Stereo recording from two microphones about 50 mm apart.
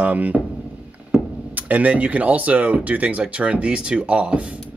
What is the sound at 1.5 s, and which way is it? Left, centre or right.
Speech, right.